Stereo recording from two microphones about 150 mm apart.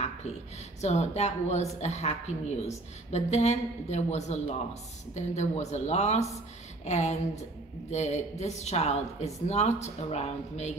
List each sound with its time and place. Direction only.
0.7 s a woman's voice: 45° left (ahead or behind)